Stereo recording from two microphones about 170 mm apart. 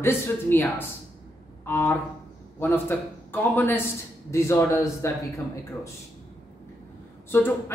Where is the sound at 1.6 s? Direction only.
10° left (ahead or behind).